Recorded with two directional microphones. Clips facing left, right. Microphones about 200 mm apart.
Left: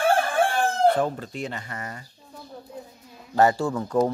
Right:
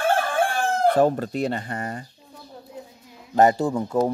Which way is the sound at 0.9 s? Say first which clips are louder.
Right 6 dB; 45° right (ahead or behind).